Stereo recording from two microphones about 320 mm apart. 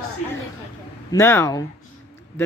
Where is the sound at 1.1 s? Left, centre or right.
Centre.